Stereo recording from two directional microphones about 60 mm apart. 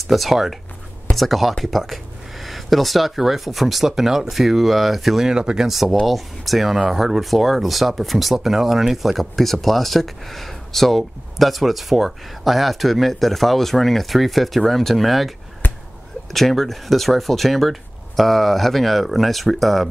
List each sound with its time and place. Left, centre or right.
0.0 s speech: centre
15.6 s a sound: left
16.3 s speech: centre